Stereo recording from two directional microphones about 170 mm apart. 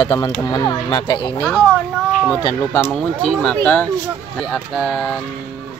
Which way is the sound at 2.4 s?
20° left (ahead or behind).